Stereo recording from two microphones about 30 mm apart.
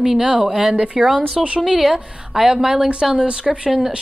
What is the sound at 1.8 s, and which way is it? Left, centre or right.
A woman's voice, centre.